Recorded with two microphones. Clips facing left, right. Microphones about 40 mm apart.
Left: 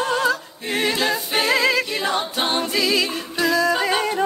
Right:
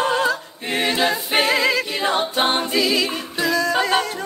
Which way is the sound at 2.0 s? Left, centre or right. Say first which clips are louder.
Right 3 dB; centre.